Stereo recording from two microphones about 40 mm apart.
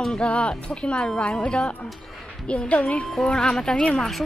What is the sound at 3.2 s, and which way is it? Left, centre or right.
Speech, left.